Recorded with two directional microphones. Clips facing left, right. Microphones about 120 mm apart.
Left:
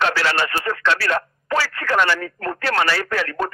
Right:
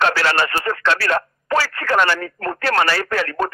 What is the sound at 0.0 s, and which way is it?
Speech, 50° right (ahead or behind).